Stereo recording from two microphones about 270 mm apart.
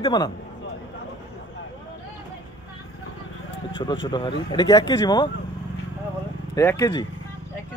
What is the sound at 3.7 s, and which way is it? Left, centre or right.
Speech, centre.